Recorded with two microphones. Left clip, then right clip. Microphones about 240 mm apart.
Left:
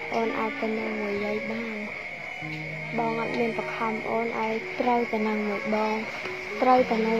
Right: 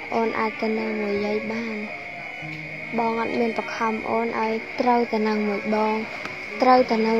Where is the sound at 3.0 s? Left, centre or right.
Right.